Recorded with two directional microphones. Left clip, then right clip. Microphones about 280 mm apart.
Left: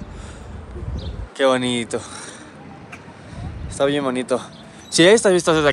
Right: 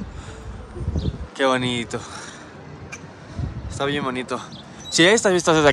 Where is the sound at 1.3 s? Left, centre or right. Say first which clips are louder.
Left 3 dB; centre.